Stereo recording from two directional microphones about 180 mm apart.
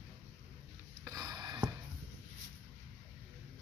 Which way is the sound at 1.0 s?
20° right (ahead or behind).